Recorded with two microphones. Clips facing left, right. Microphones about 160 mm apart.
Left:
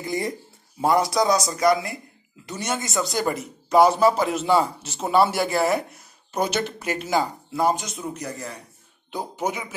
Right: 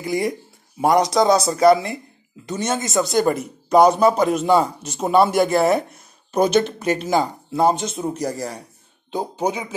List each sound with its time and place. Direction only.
0.0 s a man's voice: 15° right (ahead or behind); by 8.6 s 40° right (ahead or behind)
9.1 s speech: 20° right (ahead or behind)